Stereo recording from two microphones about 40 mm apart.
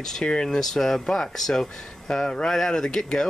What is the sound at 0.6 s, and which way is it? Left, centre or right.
Speech, centre.